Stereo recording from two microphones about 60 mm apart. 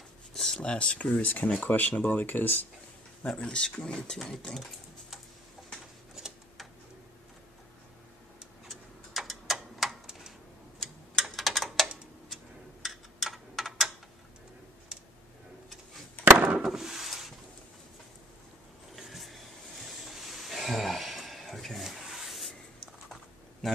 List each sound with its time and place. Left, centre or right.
0.3 s a sound: centre
0.6 s speech: centre
3.3 s speech: centre
6.1 s tick-tock: centre
8.6 s tick-tock: centre
10.0 s a sound: centre
10.8 s tick-tock: centre
16.4 s wood: centre
18.9 s music: centre
23.6 s a sound: centre